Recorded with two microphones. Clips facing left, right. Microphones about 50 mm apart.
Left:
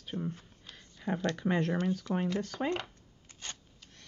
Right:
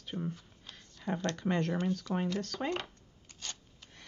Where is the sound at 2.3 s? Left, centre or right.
Centre.